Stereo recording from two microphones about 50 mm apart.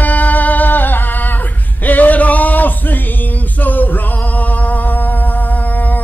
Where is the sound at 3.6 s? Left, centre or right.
Left.